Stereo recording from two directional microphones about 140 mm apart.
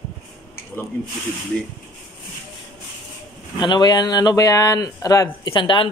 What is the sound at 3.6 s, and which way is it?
Speech, 30° left (ahead or behind).